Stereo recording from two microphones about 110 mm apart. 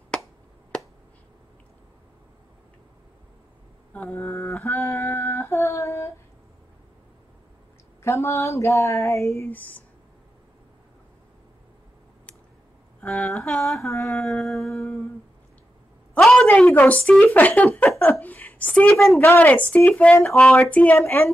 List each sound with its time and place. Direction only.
0.1 s finger snapping: 10° left (ahead or behind)
3.9 s female singing: 15° left (ahead or behind)
8.0 s a sound: 25° left (ahead or behind)
9.5 s speech: 15° left (ahead or behind)
13.0 s music: 10° left (ahead or behind)
16.3 s a woman's voice: 10° left (ahead or behind)